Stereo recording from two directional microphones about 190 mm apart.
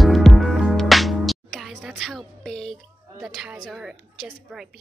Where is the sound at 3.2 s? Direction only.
Centre (ahead or behind).